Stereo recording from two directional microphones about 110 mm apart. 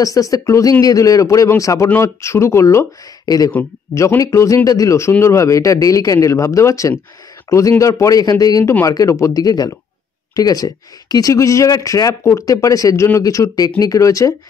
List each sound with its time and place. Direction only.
0.0 s speech: 30° left (ahead or behind)